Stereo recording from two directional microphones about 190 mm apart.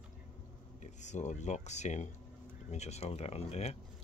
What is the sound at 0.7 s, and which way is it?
Speech, 40° left (ahead or behind).